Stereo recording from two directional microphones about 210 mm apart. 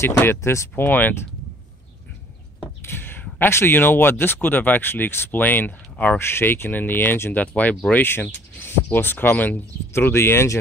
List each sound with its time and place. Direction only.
0.0 s speech: 10° left (ahead or behind)
2.6 s speech: 10° left (ahead or behind)